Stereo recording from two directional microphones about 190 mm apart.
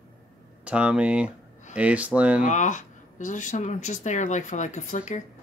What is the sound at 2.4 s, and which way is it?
Speech, 40° left (ahead or behind).